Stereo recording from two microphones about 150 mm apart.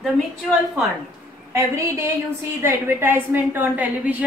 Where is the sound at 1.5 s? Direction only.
20° right (ahead or behind).